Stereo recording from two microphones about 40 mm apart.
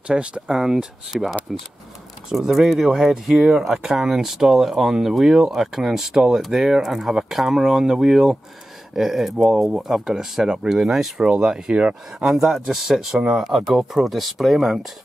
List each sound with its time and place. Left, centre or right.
0.1 s speech: right
0.5 s speech: centre
12.4 s speech: centre
12.6 s speech: centre